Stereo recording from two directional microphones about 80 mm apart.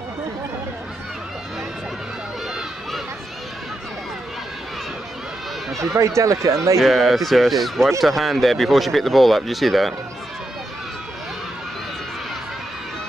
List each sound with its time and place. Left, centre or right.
5.9 s speech: right
6.8 s speech: centre